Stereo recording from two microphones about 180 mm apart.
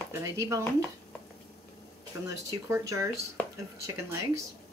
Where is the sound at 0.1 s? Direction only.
15° right (ahead or behind).